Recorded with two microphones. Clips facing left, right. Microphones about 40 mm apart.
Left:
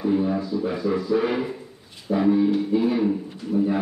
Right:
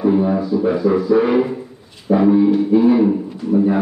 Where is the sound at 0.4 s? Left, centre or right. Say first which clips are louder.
Right 8 dB; centre.